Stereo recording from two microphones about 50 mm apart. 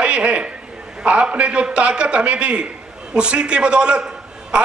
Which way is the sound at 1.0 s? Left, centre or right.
Right.